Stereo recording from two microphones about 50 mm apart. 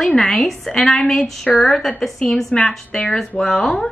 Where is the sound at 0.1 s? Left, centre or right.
Centre.